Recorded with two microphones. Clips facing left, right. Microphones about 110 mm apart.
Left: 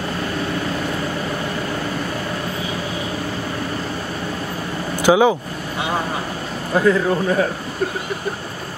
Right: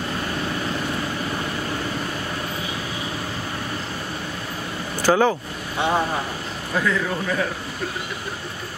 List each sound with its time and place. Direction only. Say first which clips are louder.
5.0 s speech: left 4 dB; 10° left (ahead or behind)
6.7 s speech: left 7 dB; 35° left (ahead or behind)